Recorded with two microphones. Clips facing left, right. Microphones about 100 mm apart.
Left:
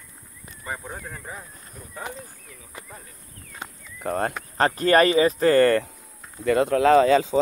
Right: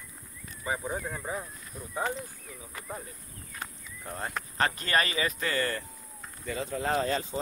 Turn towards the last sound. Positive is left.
turn(degrees=90)